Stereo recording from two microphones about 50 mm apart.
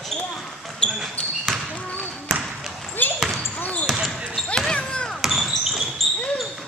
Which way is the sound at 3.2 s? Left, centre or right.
Centre.